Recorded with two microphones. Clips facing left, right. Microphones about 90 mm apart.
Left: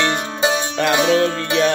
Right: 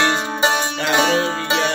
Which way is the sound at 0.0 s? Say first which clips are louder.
Right 1 dB; 25° right (ahead or behind).